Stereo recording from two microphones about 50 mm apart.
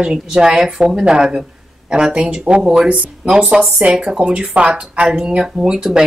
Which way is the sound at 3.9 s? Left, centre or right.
Centre.